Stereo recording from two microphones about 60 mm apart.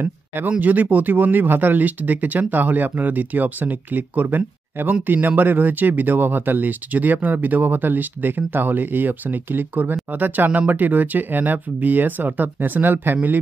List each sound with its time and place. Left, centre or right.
0.5 s speech: right